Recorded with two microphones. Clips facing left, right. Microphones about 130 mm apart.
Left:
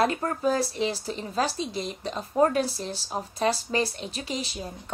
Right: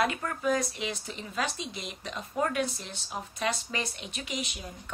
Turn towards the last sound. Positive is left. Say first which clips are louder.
# left 5 dB
turn(degrees=35)  # may be behind; listen again after turning